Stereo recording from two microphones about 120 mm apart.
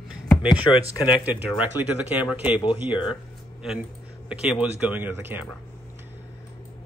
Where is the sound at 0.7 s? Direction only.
20° left (ahead or behind).